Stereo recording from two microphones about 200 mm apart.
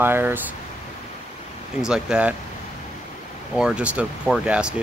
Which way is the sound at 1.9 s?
5° right (ahead or behind).